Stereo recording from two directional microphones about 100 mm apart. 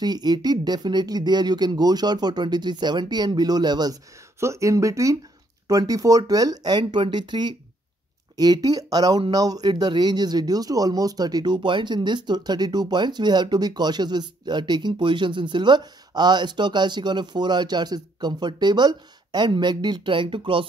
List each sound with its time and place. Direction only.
0.0 s speech: 45° right (ahead or behind)
4.4 s speech: 30° right (ahead or behind); by 20.6 s 60° right (ahead or behind)